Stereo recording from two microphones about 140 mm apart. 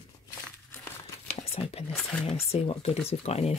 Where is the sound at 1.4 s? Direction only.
45° left (ahead or behind).